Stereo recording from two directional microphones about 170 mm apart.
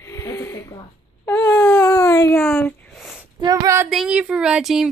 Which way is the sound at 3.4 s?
20° right (ahead or behind).